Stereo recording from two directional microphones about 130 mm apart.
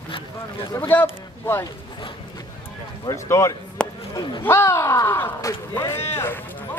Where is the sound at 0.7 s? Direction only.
20° left (ahead or behind).